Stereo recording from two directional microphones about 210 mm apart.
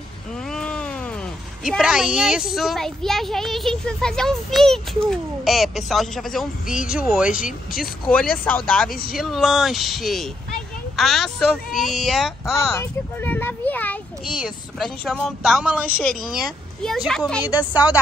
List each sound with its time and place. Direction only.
0.5 s a sound: 5° left (ahead or behind)
1.6 s a child's voice: centre (ahead or behind)
7.3 s speech: 40° left (ahead or behind)
7.8 s a child's voice: 5° left (ahead or behind)